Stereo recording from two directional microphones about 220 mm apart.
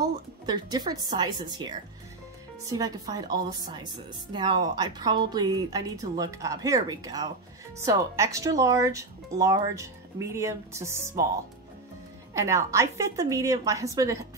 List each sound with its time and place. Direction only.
0.0 s a woman's voice: 20° right (ahead or behind)
12.4 s a woman's voice: 15° right (ahead or behind)